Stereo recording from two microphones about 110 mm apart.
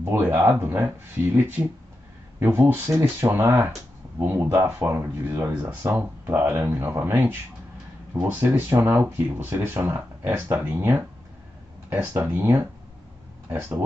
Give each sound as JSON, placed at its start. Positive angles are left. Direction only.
{"t": 0.0, "sound": "speech", "side_deg": -20}
{"t": 2.4, "sound": "speech", "side_deg": -20}
{"t": 12.1, "sound": "speech", "side_deg": -25}